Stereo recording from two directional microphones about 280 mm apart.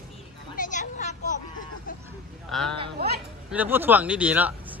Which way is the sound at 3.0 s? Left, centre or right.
Right.